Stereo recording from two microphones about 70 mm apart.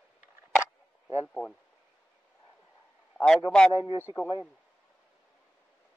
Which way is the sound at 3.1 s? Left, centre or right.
Centre.